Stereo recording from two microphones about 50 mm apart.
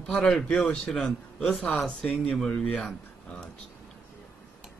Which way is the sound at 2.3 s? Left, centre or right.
Centre.